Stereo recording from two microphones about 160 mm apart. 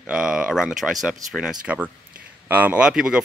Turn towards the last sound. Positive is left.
turn(degrees=-5)  # may be behind; listen again after turning